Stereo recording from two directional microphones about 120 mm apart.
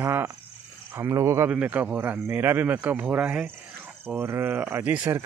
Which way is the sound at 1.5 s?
10° right (ahead or behind).